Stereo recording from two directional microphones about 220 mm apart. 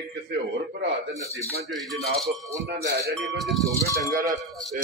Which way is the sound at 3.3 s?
Centre (ahead or behind).